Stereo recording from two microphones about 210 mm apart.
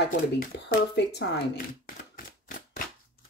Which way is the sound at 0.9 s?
55° left (ahead or behind).